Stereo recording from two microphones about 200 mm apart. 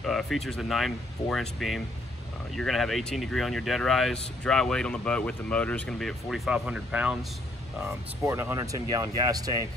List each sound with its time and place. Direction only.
0.0 s speech: centre (ahead or behind); by 9.6 s 20° right (ahead or behind)